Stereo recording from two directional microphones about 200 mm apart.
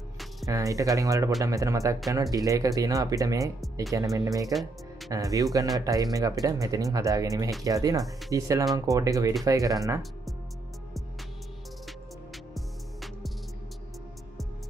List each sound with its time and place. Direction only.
0.5 s speech: 15° right (ahead or behind)
4.5 s speech: centre (ahead or behind)
5.1 s speech: 15° right (ahead or behind)
12.5 s music: centre (ahead or behind)